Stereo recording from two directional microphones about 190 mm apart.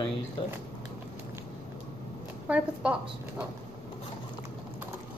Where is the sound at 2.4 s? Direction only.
5° right (ahead or behind).